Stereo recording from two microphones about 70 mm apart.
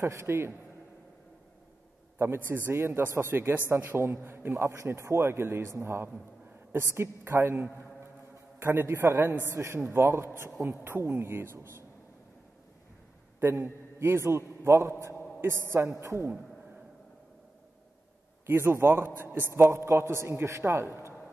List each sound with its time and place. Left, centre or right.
0.0 s a man's voice: right
2.1 s a man's voice: right
7.3 s a man's voice: right
13.5 s a man's voice: right
18.5 s a man's voice: right